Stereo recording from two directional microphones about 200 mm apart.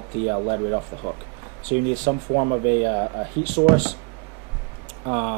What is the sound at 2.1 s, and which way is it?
Speech, 30° right (ahead or behind).